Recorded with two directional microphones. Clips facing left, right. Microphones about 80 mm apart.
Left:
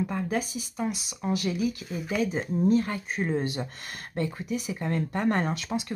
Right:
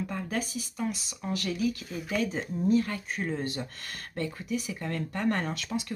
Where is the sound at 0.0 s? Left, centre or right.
Centre.